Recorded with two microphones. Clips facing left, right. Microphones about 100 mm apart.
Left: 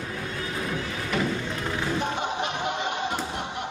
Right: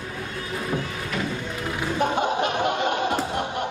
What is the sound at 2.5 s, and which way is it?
Music, 55° right (ahead or behind).